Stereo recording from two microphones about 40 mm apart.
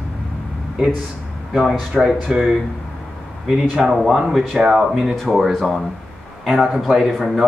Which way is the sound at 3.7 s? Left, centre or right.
Centre.